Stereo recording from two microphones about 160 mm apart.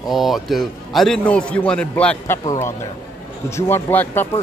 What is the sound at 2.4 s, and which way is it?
A man's voice, 20° left (ahead or behind).